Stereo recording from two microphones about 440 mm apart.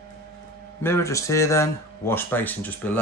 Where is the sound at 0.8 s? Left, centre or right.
Centre.